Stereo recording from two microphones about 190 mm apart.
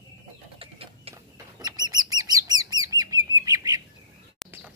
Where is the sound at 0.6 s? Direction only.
30° right (ahead or behind).